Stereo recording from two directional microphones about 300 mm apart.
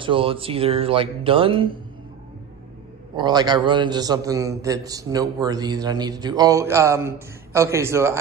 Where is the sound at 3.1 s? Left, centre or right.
Centre.